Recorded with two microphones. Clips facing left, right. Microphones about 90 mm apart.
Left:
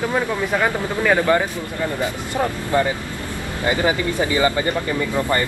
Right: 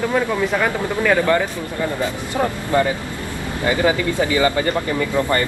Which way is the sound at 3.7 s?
20° left (ahead or behind).